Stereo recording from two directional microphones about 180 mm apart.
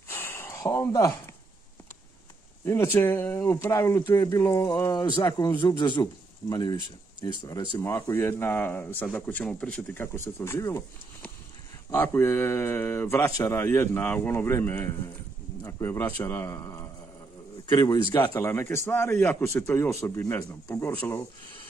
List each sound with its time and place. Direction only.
0.1 s a sound: 15° left (ahead or behind)
2.6 s speech: 15° left (ahead or behind)
11.9 s a man's voice: 15° left (ahead or behind)